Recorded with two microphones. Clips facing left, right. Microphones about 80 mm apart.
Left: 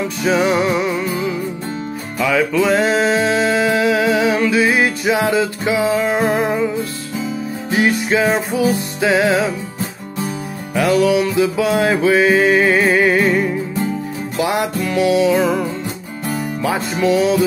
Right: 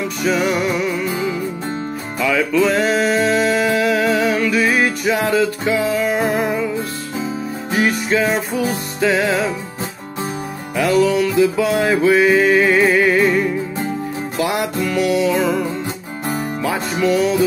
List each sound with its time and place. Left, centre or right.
0.3 s music: left
2.1 s music: centre
7.8 s music: centre
11.1 s music: centre
12.1 s music: centre
16.6 s music: centre